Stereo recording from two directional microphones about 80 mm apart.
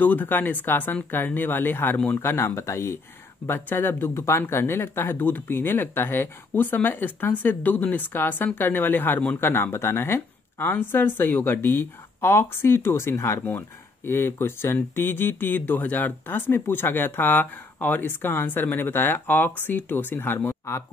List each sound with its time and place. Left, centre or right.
0.0 s speech: left